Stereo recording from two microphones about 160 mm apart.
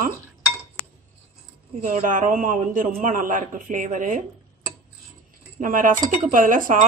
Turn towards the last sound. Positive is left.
turn(degrees=-60)  # may be behind; listen again after turning